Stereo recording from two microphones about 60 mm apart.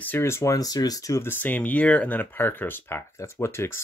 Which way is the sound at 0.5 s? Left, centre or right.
Left.